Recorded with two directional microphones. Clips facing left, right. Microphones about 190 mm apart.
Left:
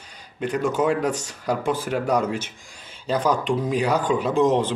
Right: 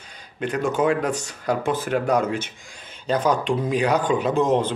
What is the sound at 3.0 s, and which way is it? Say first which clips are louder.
Speech: right 1 dB; 5° left (ahead or behind).